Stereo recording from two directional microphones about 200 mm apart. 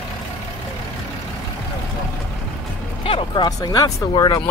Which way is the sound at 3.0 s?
25° left (ahead or behind).